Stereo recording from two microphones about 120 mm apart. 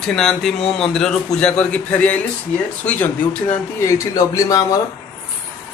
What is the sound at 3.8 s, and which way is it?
Speech, 30° left (ahead or behind).